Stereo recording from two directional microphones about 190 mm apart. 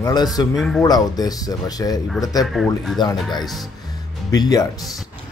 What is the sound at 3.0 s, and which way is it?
Speech, 20° left (ahead or behind).